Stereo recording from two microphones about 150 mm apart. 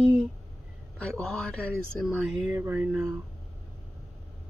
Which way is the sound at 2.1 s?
15° right (ahead or behind).